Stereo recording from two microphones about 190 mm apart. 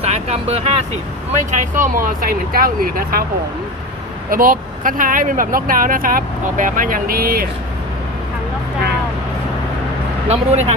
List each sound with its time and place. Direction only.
0.0 s vehicle: 35° right (ahead or behind)
1.5 s speech: 45° right (ahead or behind)
4.3 s speech: 50° right (ahead or behind)
10.2 s speech: 35° right (ahead or behind)